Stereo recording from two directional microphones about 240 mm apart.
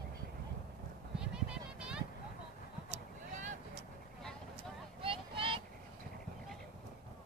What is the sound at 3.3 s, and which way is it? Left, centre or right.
Vehicle, right.